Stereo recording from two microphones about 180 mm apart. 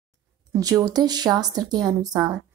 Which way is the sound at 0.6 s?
20° right (ahead or behind).